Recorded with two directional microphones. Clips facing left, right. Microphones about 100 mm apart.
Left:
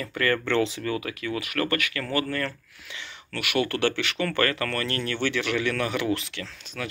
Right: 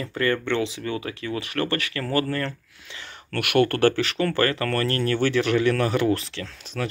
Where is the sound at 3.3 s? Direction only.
55° right (ahead or behind).